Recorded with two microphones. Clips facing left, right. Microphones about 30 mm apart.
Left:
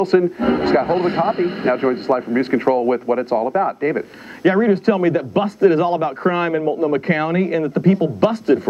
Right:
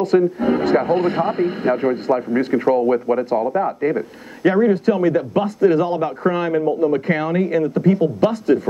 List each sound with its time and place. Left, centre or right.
0.1 s speech: left
4.7 s speech: left